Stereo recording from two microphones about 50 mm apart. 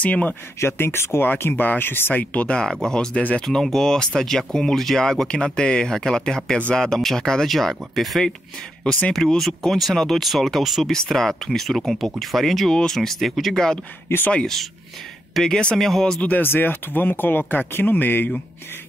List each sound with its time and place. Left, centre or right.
0.0 s speech: left
0.6 s speech: left
2.3 s speech: left
2.8 s speech: centre
3.2 s speech: left
3.4 s speech: centre
7.4 s speech: centre
14.1 s speech: left
14.4 s speech: centre
16.3 s speech: left